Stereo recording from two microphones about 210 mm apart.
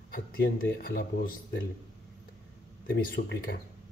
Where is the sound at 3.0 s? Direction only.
45° left (ahead or behind).